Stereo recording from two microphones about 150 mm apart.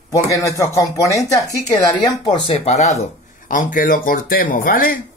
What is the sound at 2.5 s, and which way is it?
Speech, 45° left (ahead or behind).